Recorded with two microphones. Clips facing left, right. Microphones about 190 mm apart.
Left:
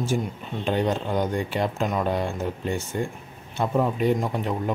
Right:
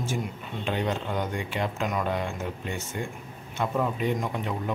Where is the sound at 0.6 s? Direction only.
40° left (ahead or behind).